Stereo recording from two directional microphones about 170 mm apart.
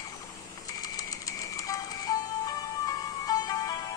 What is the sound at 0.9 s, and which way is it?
Music, 20° left (ahead or behind).